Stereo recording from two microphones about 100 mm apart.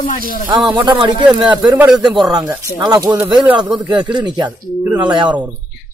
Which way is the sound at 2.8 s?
40° right (ahead or behind).